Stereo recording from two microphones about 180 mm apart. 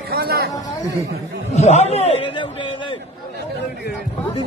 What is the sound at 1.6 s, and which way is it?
A man's voice, 35° left (ahead or behind).